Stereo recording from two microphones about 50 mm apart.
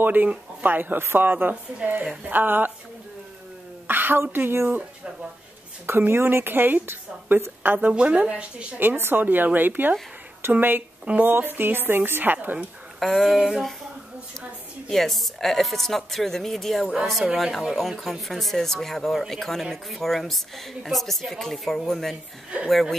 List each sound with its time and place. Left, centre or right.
0.0 s a woman's voice: right
2.2 s a woman's voice: right
3.8 s a sound: right
4.5 s a woman's voice: right
5.9 s a woman's voice: right
7.9 s a woman's voice: right
8.7 s a woman's voice: right
13.0 s speech: centre
14.9 s speech: centre